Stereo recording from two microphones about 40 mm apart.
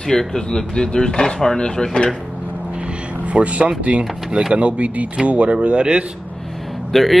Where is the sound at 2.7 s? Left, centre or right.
Right.